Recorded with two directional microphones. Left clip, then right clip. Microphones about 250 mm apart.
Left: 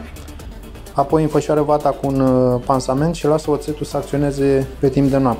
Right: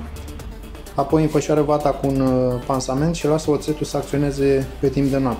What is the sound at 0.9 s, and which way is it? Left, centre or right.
Speech, centre.